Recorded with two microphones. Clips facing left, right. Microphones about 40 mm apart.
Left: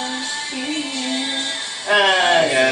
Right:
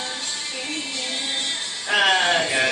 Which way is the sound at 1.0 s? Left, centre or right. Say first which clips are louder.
Left 6 dB; left.